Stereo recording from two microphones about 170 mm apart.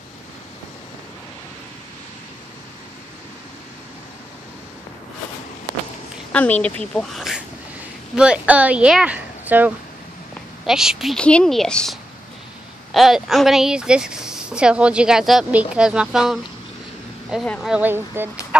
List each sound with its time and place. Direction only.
6.3 s speech: 10° left (ahead or behind)
17.6 s speech: 10° right (ahead or behind)